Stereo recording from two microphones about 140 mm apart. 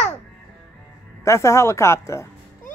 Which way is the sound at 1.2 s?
20° left (ahead or behind).